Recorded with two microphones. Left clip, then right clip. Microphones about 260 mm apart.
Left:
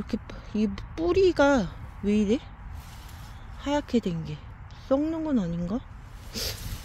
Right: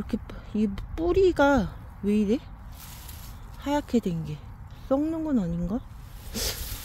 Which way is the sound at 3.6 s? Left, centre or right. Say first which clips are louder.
Even; centre.